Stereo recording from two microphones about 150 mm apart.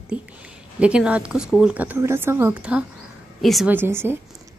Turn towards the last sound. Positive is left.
turn(degrees=-15)  # may be behind; listen again after turning